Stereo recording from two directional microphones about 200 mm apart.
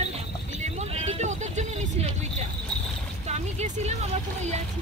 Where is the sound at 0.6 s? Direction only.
35° right (ahead or behind).